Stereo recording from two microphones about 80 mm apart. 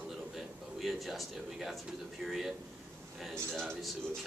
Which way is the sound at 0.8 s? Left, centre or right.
Centre.